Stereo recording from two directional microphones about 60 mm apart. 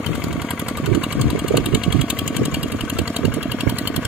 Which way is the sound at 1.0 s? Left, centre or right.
Centre.